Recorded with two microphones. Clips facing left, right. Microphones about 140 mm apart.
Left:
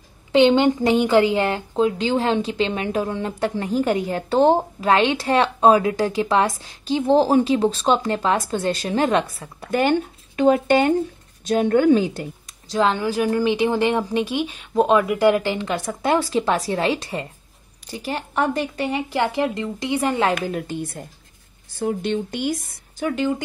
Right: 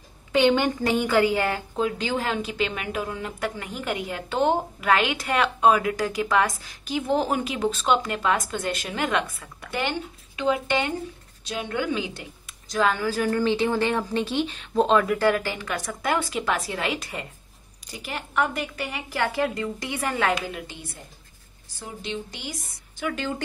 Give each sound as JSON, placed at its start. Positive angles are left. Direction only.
{"t": 0.3, "sound": "a woman's voice", "side_deg": 25}
{"t": 9.7, "sound": "a woman's voice", "side_deg": 45}
{"t": 12.6, "sound": "a woman's voice", "side_deg": 25}
{"t": 20.4, "sound": "a woman's voice", "side_deg": 45}